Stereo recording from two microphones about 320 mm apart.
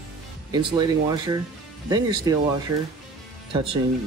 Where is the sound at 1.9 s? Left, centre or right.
Centre.